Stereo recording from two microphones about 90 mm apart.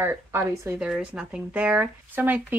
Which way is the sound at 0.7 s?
10° right (ahead or behind).